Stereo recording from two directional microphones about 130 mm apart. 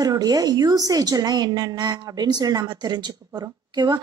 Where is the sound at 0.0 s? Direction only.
30° right (ahead or behind).